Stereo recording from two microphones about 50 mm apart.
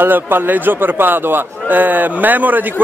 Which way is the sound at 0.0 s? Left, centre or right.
Right.